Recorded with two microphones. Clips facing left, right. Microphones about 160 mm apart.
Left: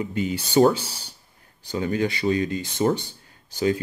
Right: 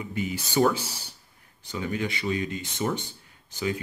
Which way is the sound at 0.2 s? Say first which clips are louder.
Left 5 dB; 30° left (ahead or behind).